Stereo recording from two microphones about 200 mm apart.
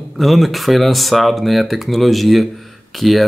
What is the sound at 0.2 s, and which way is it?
Speech, centre (ahead or behind).